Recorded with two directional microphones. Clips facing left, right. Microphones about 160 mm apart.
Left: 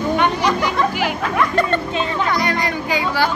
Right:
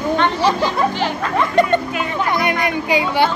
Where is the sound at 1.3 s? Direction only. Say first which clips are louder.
Right 4 dB; 20° right (ahead or behind).